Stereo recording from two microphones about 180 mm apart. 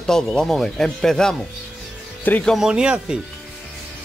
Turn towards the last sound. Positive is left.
turn(degrees=-5)  # may be behind; listen again after turning